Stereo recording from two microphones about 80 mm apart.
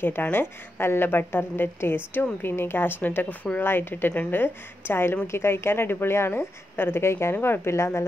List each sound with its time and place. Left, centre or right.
0.0 s a woman's voice: left